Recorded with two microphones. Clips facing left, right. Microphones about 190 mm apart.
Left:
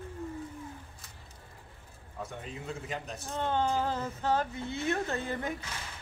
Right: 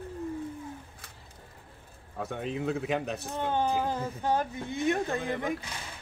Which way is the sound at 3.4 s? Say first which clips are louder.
Right 1 dB; 15° right (ahead or behind).